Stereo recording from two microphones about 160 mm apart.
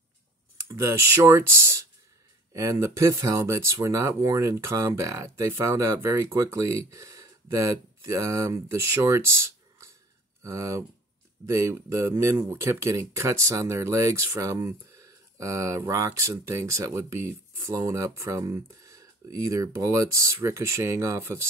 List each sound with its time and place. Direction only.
0.6 s speech: 15° right (ahead or behind)